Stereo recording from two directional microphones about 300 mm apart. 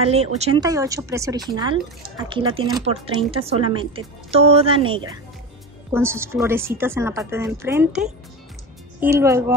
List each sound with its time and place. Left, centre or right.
0.0 s speech: centre